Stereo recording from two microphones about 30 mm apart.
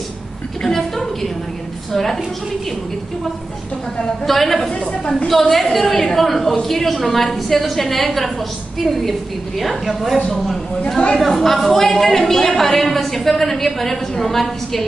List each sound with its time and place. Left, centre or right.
0.6 s a sound: centre
1.9 s a woman's voice: centre
4.3 s a woman's voice: centre
4.6 s a woman's voice: left
5.3 s a woman's voice: centre